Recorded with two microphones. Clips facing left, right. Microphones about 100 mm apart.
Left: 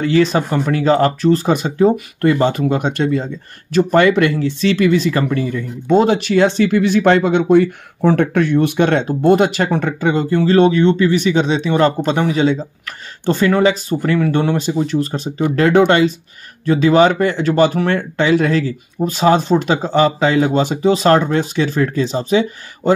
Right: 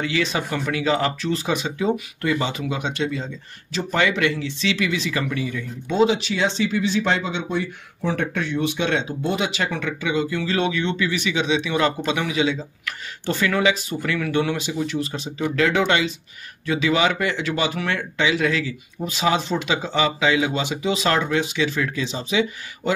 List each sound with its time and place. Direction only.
0.0 s speech: 40° left (ahead or behind)